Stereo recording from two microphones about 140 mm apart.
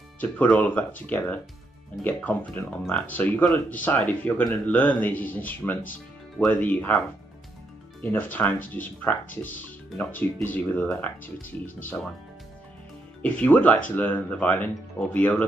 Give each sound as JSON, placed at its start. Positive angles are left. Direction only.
{"t": 0.2, "sound": "speech", "side_deg": 10}
{"t": 8.0, "sound": "speech", "side_deg": 15}
{"t": 11.4, "sound": "speech", "side_deg": 75}
{"t": 13.2, "sound": "speech", "side_deg": 10}